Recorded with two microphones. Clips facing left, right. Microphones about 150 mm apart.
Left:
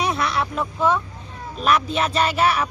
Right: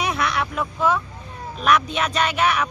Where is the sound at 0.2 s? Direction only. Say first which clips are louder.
Even; 30° left (ahead or behind).